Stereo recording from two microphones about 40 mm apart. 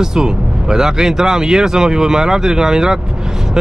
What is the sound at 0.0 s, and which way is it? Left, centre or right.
A man's voice, centre.